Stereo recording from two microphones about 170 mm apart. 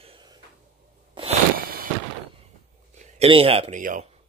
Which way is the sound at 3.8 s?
50° right (ahead or behind).